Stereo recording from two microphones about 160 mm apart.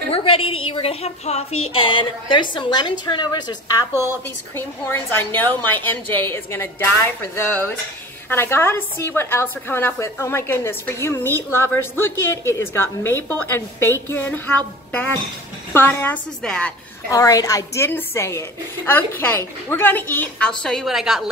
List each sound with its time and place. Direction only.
0.1 s a woman's voice: 35° left (ahead or behind)
4.6 s a woman's voice: 15° left (ahead or behind)
17.1 s a woman's voice: 20° left (ahead or behind); by 21.3 s 5° right (ahead or behind)